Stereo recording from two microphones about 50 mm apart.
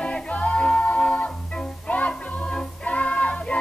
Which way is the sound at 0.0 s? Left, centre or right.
Left.